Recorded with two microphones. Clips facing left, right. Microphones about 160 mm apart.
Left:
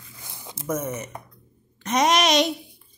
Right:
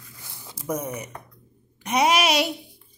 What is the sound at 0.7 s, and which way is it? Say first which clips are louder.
A woman's voice: left 1 dB; 15° right (ahead or behind).